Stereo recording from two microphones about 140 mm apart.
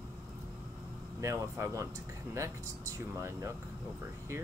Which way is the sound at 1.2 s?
20° right (ahead or behind).